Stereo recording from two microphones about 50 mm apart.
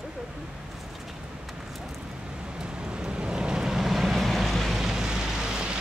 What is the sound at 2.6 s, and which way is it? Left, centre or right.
Vehicle, centre.